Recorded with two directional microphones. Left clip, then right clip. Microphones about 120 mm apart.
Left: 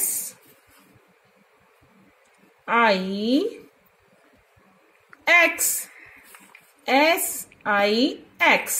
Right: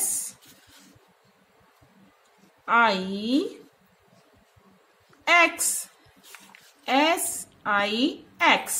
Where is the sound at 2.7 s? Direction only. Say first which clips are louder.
Left 1 dB; 35° left (ahead or behind).